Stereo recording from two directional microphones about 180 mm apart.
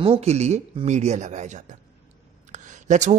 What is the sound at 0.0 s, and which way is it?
Speech, 35° right (ahead or behind).